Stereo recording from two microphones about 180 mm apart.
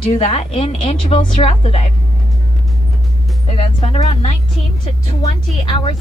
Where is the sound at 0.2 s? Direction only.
35° left (ahead or behind).